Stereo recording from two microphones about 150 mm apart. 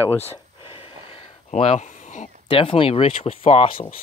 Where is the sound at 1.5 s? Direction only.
45° left (ahead or behind).